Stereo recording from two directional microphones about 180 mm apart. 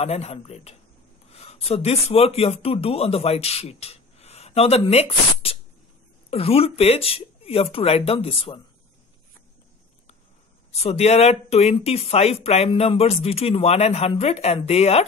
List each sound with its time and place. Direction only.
0.0 s speech: 35° left (ahead or behind)
10.7 s speech: 35° left (ahead or behind)